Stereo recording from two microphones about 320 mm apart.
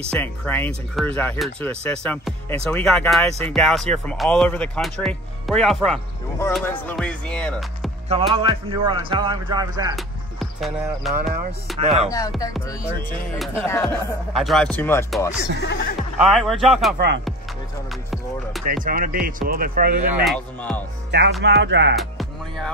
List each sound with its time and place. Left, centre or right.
0.2 s speech: centre
8.1 s speech: centre
9.9 s speech: centre
11.8 s speech: centre
13.4 s speech: centre
15.6 s speech: left
16.0 s speech: centre
18.9 s speech: right
20.2 s speech: centre
21.1 s speech: right